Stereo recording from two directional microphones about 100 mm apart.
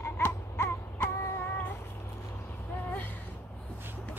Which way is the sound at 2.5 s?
20° left (ahead or behind).